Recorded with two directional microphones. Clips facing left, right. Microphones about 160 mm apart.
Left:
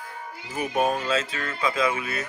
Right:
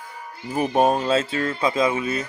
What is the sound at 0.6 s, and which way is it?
Speech, 35° right (ahead or behind).